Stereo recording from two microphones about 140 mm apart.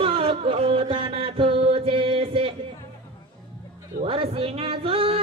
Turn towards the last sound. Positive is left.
turn(degrees=-40)  # may be behind; listen again after turning